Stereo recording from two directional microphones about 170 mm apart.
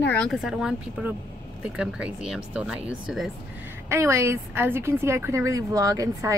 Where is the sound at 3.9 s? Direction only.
15° right (ahead or behind).